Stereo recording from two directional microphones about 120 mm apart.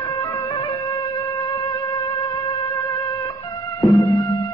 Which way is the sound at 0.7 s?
35° left (ahead or behind).